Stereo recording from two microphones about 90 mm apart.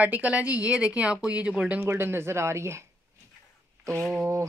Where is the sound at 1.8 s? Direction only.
25° right (ahead or behind).